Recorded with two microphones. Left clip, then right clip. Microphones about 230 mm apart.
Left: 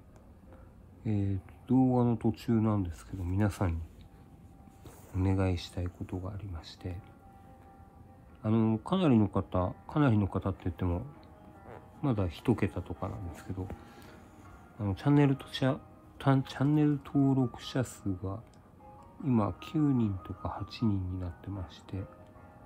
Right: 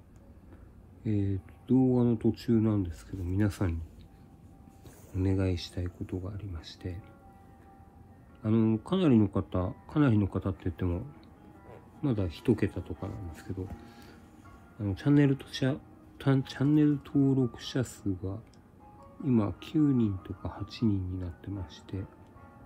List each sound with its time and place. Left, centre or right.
1.0 s speech: left
5.1 s speech: left
8.4 s speech: centre
12.0 s speech: left